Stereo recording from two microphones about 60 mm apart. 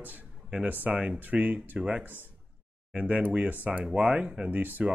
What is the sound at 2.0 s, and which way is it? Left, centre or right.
Speech, right.